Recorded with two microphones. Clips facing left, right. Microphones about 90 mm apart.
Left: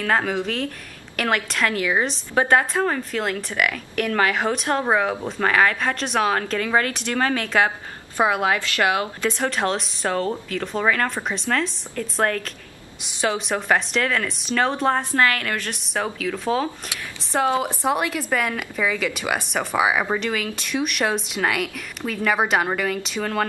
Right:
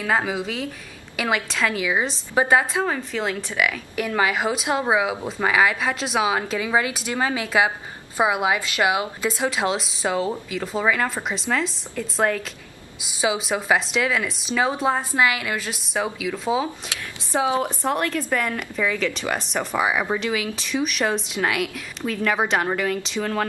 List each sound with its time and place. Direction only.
0.0 s a woman's voice: 10° right (ahead or behind)
9.3 s a woman's voice: 5° right (ahead or behind)
17.6 s a woman's voice: 5° left (ahead or behind)